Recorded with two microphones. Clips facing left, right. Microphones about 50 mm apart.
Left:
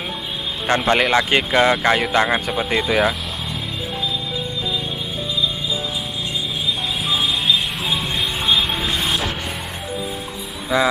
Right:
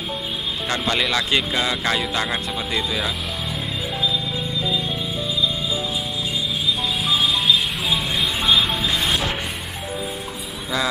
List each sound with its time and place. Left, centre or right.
0.7 s speech: left
2.9 s speech: left
7.0 s a sound: centre
10.7 s speech: centre